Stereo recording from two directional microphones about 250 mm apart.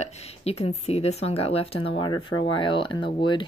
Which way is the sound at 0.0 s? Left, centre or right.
Left.